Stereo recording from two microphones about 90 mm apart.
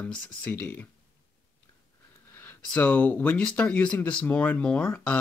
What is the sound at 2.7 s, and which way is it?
Speech, 15° left (ahead or behind).